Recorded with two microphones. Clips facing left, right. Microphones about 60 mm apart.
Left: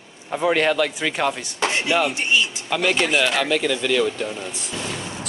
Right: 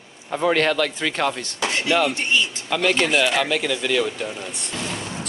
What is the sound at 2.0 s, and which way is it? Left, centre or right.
Speech, centre.